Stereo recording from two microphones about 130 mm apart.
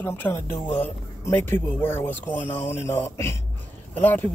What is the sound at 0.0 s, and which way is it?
Speech, 20° left (ahead or behind).